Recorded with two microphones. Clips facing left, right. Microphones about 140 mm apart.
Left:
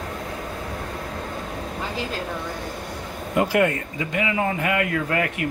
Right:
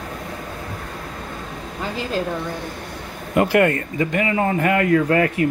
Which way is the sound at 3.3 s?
60° right (ahead or behind).